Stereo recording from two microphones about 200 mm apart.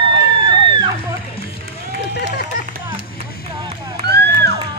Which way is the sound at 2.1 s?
60° left (ahead or behind).